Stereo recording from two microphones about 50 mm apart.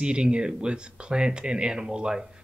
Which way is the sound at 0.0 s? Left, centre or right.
Centre.